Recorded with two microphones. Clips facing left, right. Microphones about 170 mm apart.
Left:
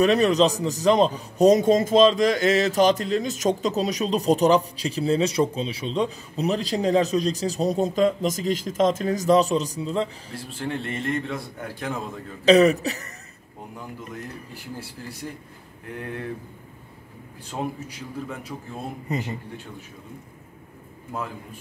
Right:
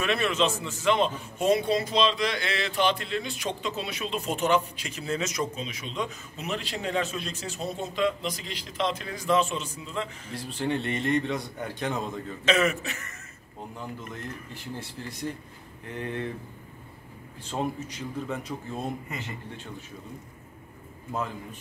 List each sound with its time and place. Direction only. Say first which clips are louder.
0.0 s a man's voice: left 8 dB; 40° left (ahead or behind)
10.3 s a man's voice: right 1 dB; centre (ahead or behind)
12.4 s a man's voice: left 9 dB; 35° left (ahead or behind)
14.1 s speech: left 2 dB; 10° left (ahead or behind)
17.5 s speech: even; 10° left (ahead or behind)
19.1 s a man's voice: left 10 dB; 35° left (ahead or behind)